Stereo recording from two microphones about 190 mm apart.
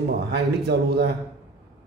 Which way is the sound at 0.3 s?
60° right (ahead or behind).